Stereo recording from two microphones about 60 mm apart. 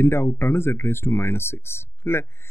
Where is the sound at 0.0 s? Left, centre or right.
Left.